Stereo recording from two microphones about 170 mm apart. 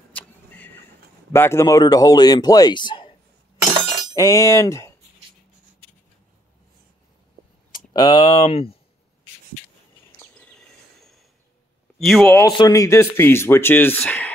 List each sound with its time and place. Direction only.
0.1 s vehicle: 10° left (ahead or behind)
1.3 s speech: 15° left (ahead or behind)
7.7 s speech: 25° left (ahead or behind)
8.5 s speech: 35° left (ahead or behind)
10.1 s a sound: 5° left (ahead or behind)
12.0 s speech: 5° left (ahead or behind)
12.4 s speech: 25° left (ahead or behind)